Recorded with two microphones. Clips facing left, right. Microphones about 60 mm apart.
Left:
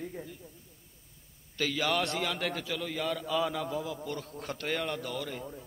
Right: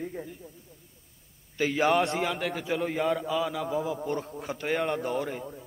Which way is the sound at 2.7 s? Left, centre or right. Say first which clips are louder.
Right 6 dB; right.